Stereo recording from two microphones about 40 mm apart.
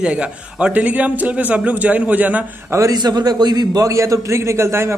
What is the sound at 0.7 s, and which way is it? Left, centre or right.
A man's voice, right.